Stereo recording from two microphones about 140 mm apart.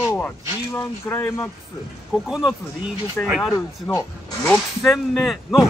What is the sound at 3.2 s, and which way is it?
Speech, 15° left (ahead or behind).